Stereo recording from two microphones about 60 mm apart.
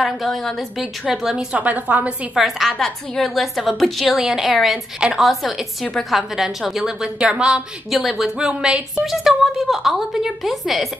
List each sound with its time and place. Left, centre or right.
0.0 s a woman's voice: centre; by 2.1 s right
2.3 s a woman's voice: centre
7.9 s a woman's voice: centre